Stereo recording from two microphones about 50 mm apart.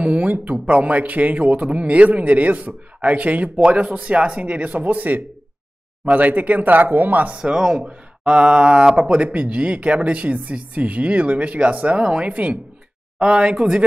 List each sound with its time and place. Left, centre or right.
0.0 s speech: right
7.3 s speech: centre